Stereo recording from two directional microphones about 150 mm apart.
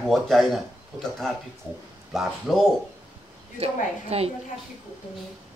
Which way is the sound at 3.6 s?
40° right (ahead or behind).